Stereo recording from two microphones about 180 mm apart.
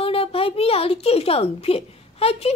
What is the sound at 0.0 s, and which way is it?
A woman's voice, 30° left (ahead or behind).